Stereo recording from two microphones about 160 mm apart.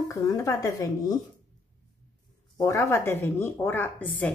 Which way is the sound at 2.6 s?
20° left (ahead or behind).